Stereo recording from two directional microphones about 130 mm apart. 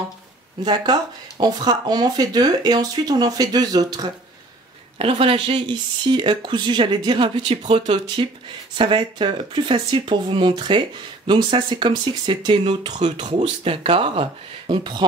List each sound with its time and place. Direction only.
1.4 s speech: 30° right (ahead or behind)
4.9 s speech: 45° right (ahead or behind)